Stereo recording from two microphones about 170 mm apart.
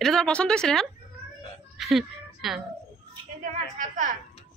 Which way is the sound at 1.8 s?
Centre (ahead or behind).